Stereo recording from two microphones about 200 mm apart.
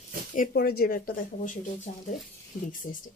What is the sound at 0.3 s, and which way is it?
Speech, 45° left (ahead or behind).